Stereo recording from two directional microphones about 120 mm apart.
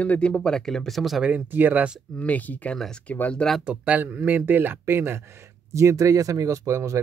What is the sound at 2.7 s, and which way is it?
Speech, centre (ahead or behind).